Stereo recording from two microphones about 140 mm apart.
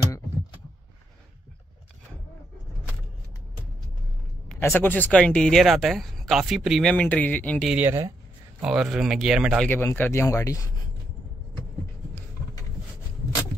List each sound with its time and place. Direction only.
4.6 s speech: 15° left (ahead or behind)
7.6 s speech: 10° right (ahead or behind)
8.6 s speech: 5° right (ahead or behind)
9.7 s speech: 15° left (ahead or behind)